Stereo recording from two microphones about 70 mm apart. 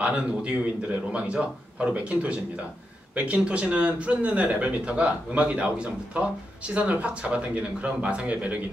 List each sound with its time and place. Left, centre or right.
0.0 s a man's voice: centre